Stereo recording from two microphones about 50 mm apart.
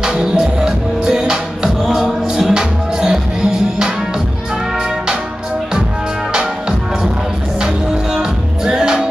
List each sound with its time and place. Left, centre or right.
0.0 s music: centre
7.6 s music: centre